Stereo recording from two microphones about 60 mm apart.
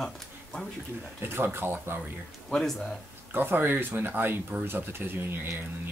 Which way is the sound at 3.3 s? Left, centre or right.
Right.